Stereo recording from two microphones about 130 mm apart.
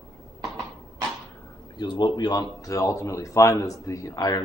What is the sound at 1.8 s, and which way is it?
Speech, 35° left (ahead or behind).